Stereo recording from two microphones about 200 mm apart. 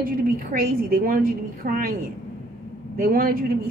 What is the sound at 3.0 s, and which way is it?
Speech, 45° right (ahead or behind).